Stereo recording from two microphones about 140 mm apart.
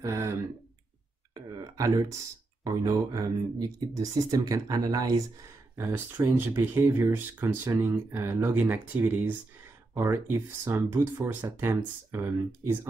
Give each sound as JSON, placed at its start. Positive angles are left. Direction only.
{"t": 0.0, "sound": "speech", "side_deg": -20}
{"t": 1.3, "sound": "a sound", "side_deg": -30}
{"t": 2.6, "sound": "speech", "side_deg": -25}
{"t": 5.8, "sound": "speech", "side_deg": -15}
{"t": 9.9, "sound": "speech", "side_deg": -25}